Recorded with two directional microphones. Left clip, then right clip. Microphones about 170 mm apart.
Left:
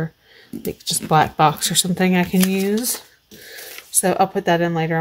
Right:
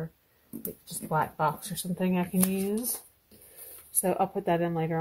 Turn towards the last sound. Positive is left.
turn(degrees=10)  # may be behind; listen again after turning